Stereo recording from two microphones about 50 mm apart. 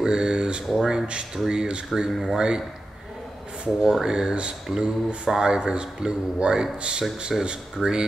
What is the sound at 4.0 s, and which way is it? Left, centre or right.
Speech, centre.